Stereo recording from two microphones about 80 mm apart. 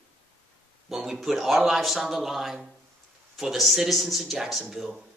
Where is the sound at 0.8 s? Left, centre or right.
Centre.